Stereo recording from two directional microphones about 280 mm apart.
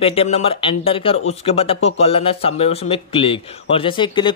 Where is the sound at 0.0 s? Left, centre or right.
Centre.